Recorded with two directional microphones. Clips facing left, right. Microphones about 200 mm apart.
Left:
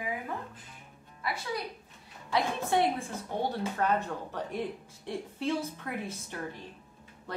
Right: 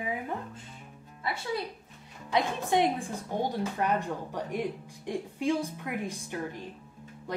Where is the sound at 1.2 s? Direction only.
25° right (ahead or behind).